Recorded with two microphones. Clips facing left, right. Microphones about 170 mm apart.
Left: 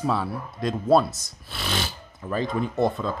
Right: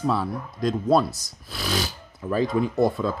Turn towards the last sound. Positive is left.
turn(degrees=-5)  # may be behind; listen again after turning